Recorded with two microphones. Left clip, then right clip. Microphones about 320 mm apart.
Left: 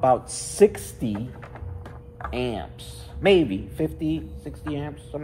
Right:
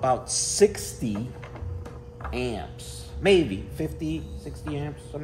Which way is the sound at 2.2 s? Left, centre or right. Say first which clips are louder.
Left 2 dB; centre.